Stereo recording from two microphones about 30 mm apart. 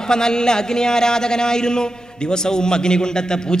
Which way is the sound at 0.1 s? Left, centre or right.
Left.